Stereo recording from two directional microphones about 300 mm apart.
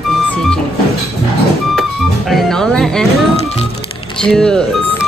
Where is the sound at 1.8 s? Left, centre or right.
Centre.